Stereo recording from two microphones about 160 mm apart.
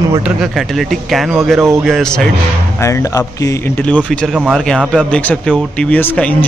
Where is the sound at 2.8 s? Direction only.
20° left (ahead or behind).